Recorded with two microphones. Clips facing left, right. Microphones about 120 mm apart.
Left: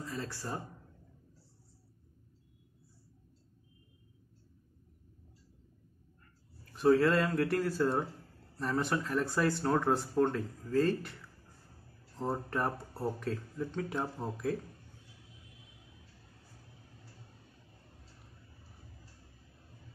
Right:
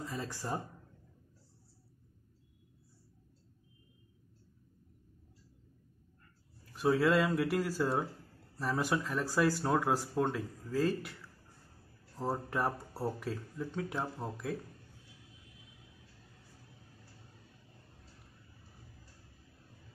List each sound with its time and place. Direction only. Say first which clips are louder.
0.0 s speech: even; 15° right (ahead or behind)
6.6 s speech: left 3 dB; 5° right (ahead or behind)
12.2 s speech: even; 5° right (ahead or behind)